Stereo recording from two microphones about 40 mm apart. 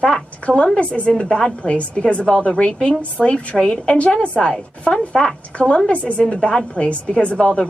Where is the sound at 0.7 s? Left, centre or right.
Left.